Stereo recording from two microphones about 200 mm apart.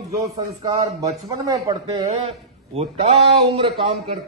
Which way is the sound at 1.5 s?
20° right (ahead or behind).